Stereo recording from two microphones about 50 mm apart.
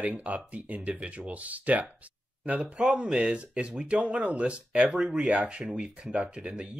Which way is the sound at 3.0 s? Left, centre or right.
Centre.